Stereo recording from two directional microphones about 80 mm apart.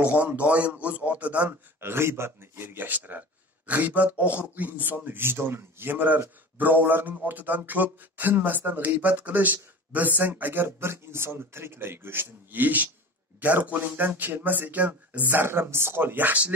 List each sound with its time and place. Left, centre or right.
0.0 s a man's voice: centre
1.8 s speech: right